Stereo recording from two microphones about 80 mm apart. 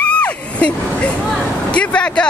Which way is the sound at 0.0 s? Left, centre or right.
Centre.